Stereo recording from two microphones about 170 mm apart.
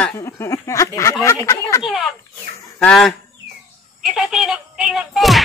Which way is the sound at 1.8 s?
Centre (ahead or behind).